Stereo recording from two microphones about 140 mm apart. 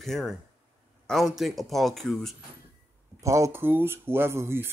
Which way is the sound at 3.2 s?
20° right (ahead or behind).